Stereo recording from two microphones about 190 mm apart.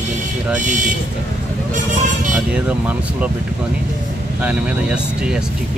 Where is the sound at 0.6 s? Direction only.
40° right (ahead or behind).